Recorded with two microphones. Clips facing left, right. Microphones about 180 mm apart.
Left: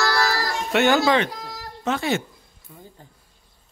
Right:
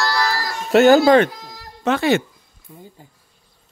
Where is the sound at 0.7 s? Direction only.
40° right (ahead or behind).